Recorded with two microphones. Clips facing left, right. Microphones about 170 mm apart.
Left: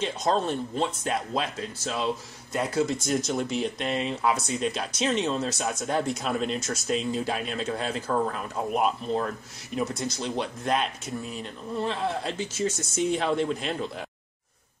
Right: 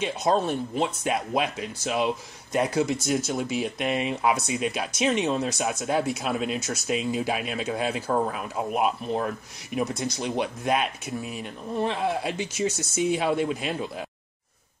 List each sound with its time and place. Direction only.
0.0 s speech: 10° right (ahead or behind)
3.1 s speech: 5° right (ahead or behind)